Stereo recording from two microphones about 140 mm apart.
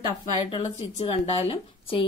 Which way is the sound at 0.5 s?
45° left (ahead or behind).